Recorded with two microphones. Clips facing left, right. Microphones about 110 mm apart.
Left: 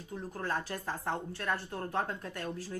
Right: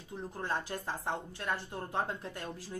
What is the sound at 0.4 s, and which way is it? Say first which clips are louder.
A woman's voice: left 1 dB; 20° right (ahead or behind).